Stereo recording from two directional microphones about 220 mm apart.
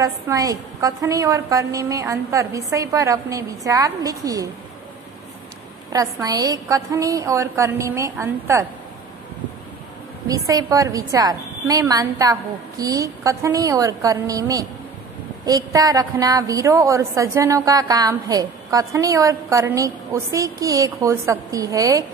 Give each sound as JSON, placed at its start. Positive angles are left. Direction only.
{"t": 0.0, "sound": "a woman's voice", "side_deg": -15}
{"t": 5.9, "sound": "a woman's voice", "side_deg": -15}
{"t": 10.2, "sound": "a woman's voice", "side_deg": -15}